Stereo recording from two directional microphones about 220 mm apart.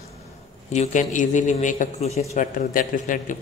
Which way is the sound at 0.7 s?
30° left (ahead or behind).